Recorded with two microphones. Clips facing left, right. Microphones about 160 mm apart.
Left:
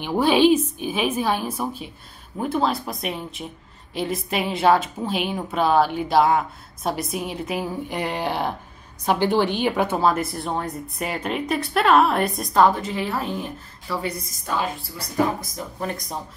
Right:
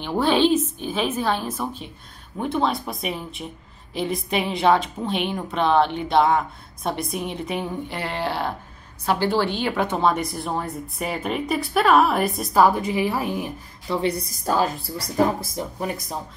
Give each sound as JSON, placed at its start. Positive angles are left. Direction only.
{"t": 0.0, "sound": "a woman's voice", "side_deg": 10}
{"t": 13.9, "sound": "a woman's voice", "side_deg": -30}